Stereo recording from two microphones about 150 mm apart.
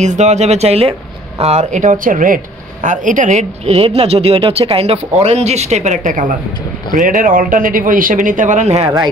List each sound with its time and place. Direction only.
0.0 s speech: 50° right (ahead or behind)